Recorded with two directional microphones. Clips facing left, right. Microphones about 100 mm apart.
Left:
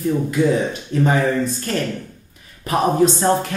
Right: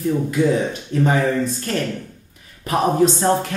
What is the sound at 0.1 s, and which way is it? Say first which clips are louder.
Speech: even; 20° left (ahead or behind).